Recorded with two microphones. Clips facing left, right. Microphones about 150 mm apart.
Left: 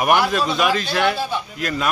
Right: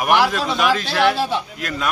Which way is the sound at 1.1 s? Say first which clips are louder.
Right 3 dB; 85° right.